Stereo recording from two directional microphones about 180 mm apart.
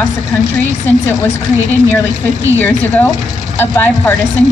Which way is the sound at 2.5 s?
10° left (ahead or behind).